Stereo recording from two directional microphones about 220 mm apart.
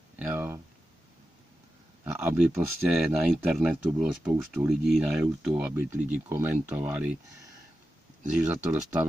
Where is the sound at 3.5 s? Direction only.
Centre (ahead or behind).